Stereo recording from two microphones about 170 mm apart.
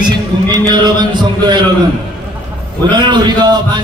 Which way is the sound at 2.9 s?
25° right (ahead or behind).